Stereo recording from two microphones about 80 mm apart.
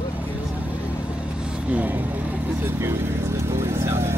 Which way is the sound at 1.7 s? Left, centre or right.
Right.